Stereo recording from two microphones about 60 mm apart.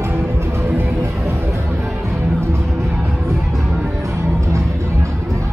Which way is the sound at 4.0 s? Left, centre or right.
Right.